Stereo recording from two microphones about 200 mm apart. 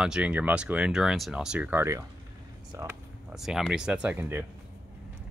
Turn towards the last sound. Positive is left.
turn(degrees=-10)  # may be behind; listen again after turning